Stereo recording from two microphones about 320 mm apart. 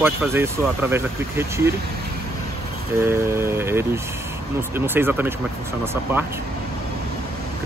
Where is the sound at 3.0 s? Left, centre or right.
Centre.